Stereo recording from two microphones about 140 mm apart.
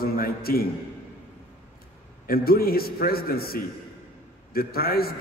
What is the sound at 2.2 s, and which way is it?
A man's voice, 90° left.